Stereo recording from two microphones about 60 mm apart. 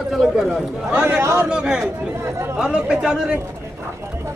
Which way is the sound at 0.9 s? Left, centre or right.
Centre.